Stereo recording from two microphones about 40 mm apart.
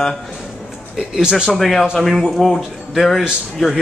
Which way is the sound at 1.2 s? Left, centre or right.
Centre.